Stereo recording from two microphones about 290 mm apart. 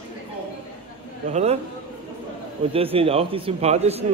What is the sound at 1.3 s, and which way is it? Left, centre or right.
Speech, right.